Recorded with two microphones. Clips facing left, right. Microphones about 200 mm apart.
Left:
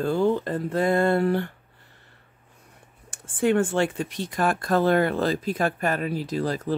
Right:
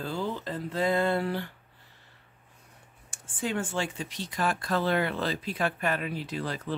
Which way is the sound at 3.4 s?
55° left (ahead or behind).